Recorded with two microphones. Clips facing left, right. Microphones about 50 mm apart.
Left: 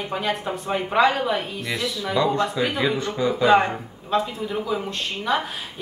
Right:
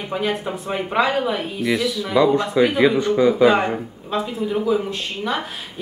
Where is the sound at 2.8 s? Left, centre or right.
Centre.